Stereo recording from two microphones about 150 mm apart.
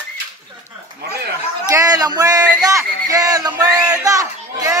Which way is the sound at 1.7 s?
25° right (ahead or behind).